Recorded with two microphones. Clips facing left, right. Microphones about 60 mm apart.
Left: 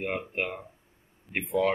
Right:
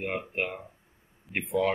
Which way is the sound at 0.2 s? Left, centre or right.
Centre.